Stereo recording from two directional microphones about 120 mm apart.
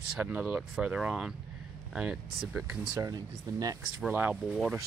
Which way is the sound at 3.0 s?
30° right (ahead or behind).